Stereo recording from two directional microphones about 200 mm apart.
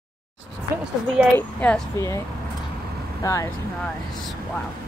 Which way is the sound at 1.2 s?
5° right (ahead or behind).